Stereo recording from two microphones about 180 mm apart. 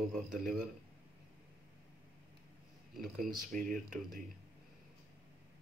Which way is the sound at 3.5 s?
50° right (ahead or behind).